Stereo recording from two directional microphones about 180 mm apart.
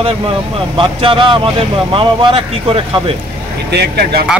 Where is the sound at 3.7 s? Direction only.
65° right (ahead or behind).